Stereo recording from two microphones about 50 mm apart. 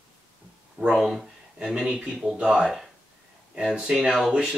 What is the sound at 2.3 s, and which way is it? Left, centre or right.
Speech, right.